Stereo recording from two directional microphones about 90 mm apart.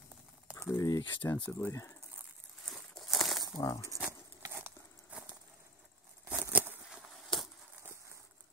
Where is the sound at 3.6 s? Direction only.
35° left (ahead or behind).